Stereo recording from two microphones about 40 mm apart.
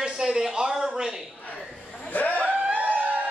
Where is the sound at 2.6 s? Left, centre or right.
Right.